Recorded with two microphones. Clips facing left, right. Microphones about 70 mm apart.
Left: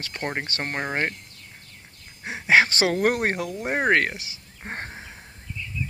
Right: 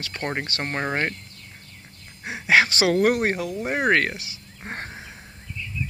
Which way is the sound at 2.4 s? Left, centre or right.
Left.